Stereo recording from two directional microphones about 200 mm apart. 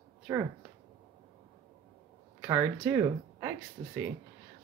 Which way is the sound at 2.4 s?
10° right (ahead or behind).